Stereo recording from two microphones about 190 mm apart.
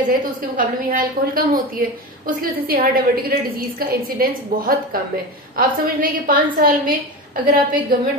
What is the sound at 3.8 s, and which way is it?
A woman's voice, 50° right (ahead or behind).